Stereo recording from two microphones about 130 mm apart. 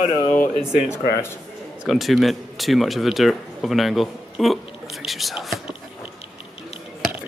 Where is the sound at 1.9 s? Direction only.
Centre (ahead or behind).